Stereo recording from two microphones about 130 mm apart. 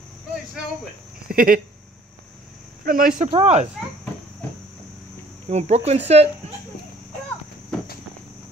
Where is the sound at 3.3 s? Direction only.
55° right (ahead or behind).